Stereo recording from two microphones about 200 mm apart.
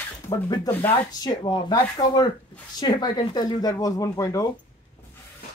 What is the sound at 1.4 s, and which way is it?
Speech, 20° left (ahead or behind).